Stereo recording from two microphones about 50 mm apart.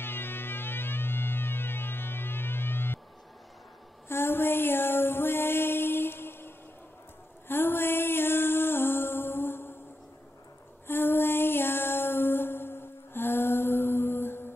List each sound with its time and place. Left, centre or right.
0.0 s music: left
4.1 s music: left
10.9 s female singing: left